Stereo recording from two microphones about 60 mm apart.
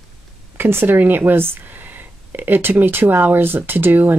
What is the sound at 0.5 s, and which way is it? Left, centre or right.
Speech, right.